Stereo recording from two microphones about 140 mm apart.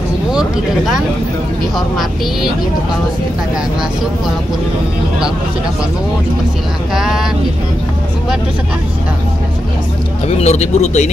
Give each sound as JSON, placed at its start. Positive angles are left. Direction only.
{"t": 0.3, "sound": "speech", "side_deg": -5}
{"t": 10.2, "sound": "speech", "side_deg": 50}